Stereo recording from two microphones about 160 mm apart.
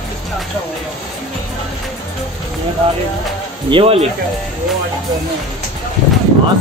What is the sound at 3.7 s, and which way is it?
Speech, 35° right (ahead or behind).